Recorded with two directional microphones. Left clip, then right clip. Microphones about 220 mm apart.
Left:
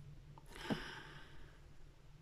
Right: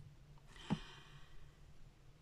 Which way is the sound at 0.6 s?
40° left (ahead or behind).